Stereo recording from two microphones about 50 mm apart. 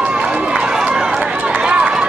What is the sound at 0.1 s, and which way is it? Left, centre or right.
Run, right.